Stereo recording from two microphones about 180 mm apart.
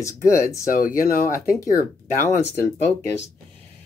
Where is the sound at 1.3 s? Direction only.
15° left (ahead or behind).